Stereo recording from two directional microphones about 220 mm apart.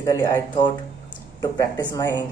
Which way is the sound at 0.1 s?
20° left (ahead or behind).